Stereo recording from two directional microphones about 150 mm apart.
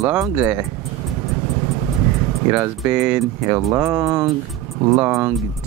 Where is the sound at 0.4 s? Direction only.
10° right (ahead or behind).